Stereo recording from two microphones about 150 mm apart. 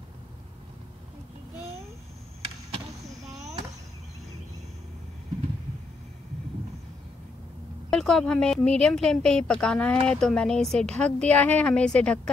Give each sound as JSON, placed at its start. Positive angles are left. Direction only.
{"t": 3.3, "sound": "chop", "side_deg": -20}
{"t": 7.9, "sound": "a woman's voice", "side_deg": 5}